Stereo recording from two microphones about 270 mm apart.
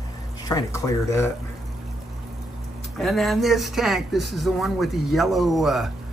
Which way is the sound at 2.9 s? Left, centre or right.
Centre.